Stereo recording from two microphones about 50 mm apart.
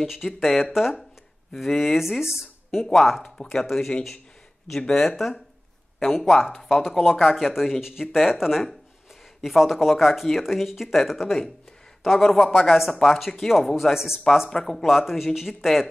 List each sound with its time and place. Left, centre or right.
0.0 s speech: centre
3.4 s speech: centre
4.8 s speech: centre